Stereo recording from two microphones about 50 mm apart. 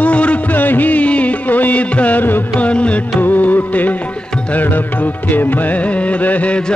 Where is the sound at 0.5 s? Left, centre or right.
Left.